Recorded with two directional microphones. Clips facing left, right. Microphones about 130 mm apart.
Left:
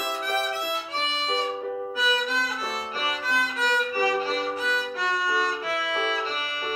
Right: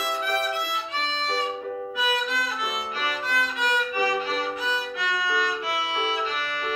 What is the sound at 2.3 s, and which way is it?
Violin, 35° left (ahead or behind).